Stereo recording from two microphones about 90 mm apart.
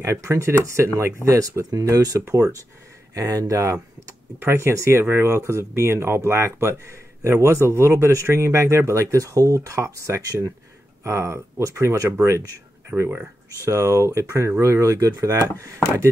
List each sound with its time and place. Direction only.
0.0 s speech: 30° right (ahead or behind)